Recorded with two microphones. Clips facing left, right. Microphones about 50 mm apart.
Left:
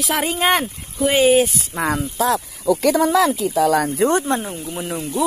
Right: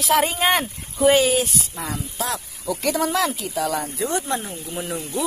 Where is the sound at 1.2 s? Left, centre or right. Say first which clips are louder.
Left 6 dB; left.